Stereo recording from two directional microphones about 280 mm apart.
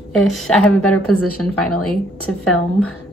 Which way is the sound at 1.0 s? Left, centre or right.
Left.